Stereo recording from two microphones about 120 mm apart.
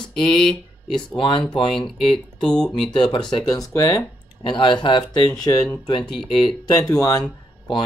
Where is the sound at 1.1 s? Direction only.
45° left (ahead or behind).